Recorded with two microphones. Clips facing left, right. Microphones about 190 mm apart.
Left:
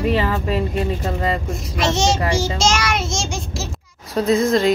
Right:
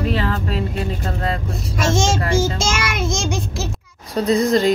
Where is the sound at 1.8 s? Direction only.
50° right (ahead or behind).